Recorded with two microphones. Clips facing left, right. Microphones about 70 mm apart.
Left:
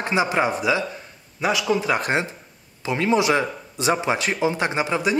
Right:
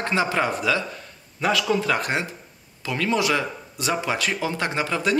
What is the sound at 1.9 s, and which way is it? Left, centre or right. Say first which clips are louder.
Speech: left 3 dB; left.